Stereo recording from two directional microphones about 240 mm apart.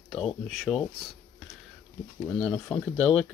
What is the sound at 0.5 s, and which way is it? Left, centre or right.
Speech, centre.